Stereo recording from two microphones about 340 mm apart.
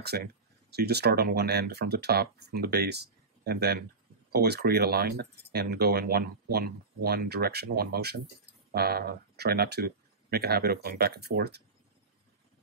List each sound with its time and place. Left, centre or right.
0.0 s speech: right